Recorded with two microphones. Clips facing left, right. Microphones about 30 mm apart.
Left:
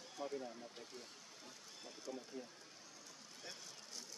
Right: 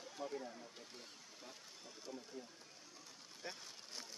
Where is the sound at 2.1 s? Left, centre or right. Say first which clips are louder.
Left 3 dB; centre.